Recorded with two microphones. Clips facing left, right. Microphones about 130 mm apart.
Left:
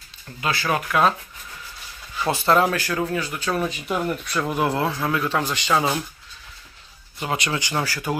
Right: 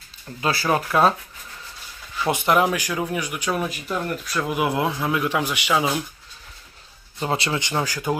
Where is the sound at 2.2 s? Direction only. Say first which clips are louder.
Even; 15° right (ahead or behind).